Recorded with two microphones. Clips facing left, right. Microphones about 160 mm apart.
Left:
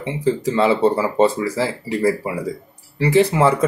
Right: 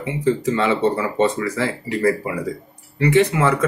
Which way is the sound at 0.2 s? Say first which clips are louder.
Left 1 dB; 35° left (ahead or behind).